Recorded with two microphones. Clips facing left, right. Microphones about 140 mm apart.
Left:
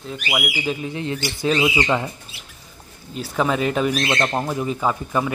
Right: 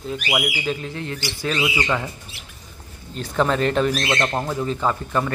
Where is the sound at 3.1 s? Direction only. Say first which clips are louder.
Right 1 dB; 5° left (ahead or behind).